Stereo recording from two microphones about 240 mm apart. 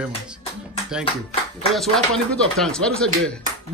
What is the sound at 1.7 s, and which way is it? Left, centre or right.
Speech, centre.